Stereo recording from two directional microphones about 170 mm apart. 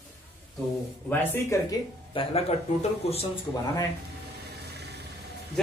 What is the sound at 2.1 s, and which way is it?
Speech, 35° left (ahead or behind).